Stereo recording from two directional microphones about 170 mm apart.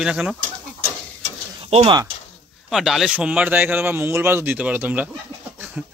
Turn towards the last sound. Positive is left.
turn(degrees=-10)  # may be behind; listen again after turning